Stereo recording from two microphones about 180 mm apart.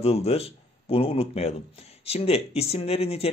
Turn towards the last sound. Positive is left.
turn(degrees=35)  # may be behind; listen again after turning